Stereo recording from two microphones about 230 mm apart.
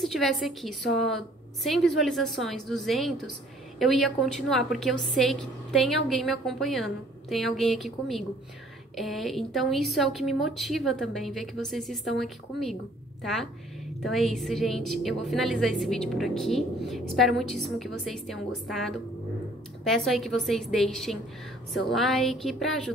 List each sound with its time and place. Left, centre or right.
0.0 s a woman's voice: centre